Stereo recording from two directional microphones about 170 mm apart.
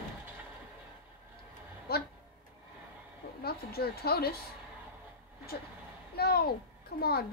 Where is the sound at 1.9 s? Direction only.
65° left (ahead or behind).